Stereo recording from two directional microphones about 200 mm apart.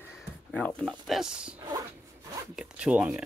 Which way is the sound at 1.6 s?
20° right (ahead or behind).